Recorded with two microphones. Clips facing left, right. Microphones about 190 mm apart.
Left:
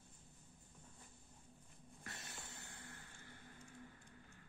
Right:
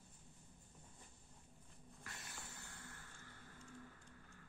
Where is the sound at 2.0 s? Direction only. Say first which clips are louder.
Left 2 dB; 25° left (ahead or behind).